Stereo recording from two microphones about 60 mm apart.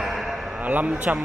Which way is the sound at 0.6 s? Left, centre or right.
Right.